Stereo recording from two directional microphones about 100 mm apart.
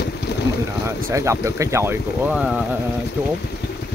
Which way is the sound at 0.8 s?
30° right (ahead or behind).